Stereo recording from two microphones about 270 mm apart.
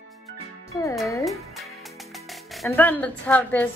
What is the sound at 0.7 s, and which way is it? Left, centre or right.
Speech, centre.